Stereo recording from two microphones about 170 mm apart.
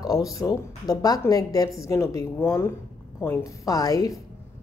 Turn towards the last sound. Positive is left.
turn(degrees=20)  # may be behind; listen again after turning